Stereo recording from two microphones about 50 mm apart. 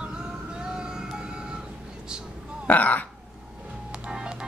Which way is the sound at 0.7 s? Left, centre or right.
Centre.